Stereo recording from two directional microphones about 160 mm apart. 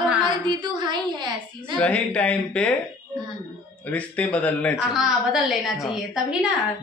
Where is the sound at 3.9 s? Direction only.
10° left (ahead or behind).